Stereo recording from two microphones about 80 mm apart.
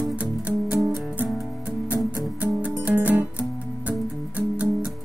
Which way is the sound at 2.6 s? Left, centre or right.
Centre.